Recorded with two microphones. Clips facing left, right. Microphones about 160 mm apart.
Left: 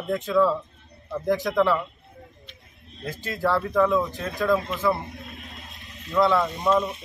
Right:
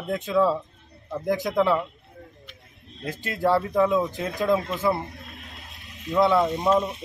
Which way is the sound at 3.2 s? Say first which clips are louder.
Right 2 dB; 20° right (ahead or behind).